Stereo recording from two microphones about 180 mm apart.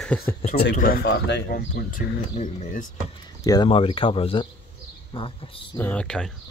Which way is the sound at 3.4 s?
25° left (ahead or behind).